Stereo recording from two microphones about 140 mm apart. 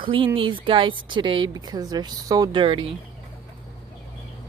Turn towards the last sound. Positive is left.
turn(degrees=-40)  # may be behind; listen again after turning